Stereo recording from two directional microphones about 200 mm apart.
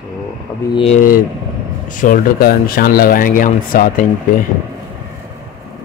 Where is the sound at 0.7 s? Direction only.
30° left (ahead or behind).